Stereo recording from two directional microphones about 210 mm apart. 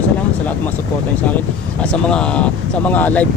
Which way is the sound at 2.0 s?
5° left (ahead or behind).